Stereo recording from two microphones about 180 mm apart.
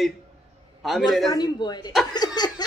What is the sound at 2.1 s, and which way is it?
Laughter, 25° left (ahead or behind).